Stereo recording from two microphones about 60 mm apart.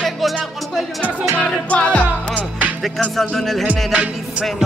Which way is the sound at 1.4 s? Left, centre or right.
Centre.